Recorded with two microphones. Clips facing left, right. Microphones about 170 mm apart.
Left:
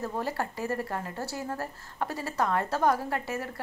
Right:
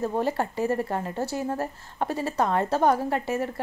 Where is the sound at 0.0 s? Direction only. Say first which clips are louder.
Right 6 dB; 25° right (ahead or behind).